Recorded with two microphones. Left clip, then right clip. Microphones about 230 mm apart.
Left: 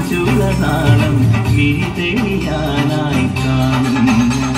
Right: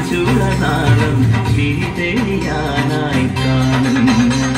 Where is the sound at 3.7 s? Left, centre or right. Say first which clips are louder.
Even; left.